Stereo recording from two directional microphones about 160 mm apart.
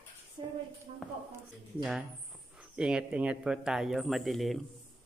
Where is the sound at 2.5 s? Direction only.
5° right (ahead or behind).